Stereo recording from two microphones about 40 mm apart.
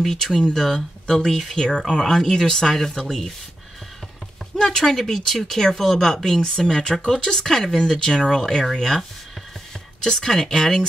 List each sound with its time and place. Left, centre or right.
0.0 s speech: centre
4.6 s speech: centre
10.0 s speech: centre